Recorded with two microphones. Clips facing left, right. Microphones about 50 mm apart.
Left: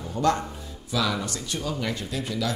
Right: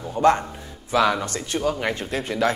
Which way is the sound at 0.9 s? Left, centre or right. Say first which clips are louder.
Right 7 dB; right.